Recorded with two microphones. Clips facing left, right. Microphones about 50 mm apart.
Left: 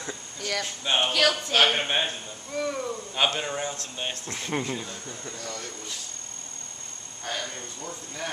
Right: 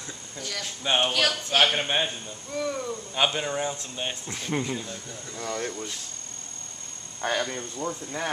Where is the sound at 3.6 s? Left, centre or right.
Centre.